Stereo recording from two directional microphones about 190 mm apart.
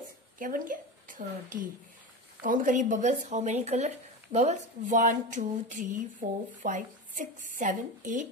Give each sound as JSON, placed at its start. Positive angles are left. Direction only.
{"t": 0.4, "sound": "a woman's voice", "side_deg": -45}